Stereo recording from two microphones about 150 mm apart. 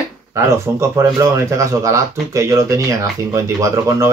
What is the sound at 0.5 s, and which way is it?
Speech, 20° right (ahead or behind).